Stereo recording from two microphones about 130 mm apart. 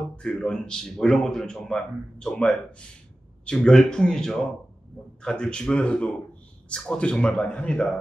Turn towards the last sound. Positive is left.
turn(degrees=10)  # may be behind; listen again after turning